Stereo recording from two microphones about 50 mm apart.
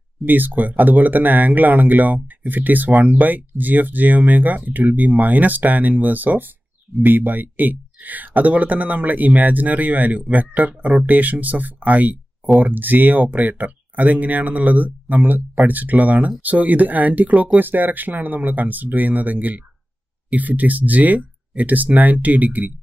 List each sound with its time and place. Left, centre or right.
0.2 s speech: right